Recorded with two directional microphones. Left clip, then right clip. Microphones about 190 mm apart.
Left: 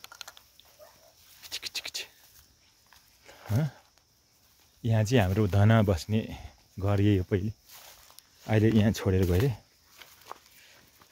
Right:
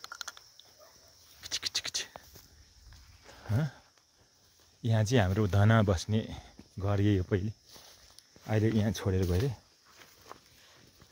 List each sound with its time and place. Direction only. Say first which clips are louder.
0.0 s a sound: right 3 dB; 5° left (ahead or behind)
1.4 s scratch: right 2 dB; 5° right (ahead or behind)
3.3 s a sound: left 3 dB; 10° left (ahead or behind)
4.8 s speech: left 2 dB; 5° left (ahead or behind)
8.5 s speech: left 5 dB; 15° left (ahead or behind)
9.9 s walk: left 5 dB; 10° left (ahead or behind)